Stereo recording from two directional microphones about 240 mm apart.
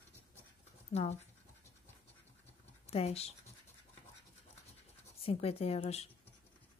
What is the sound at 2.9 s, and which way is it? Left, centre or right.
Speech, left.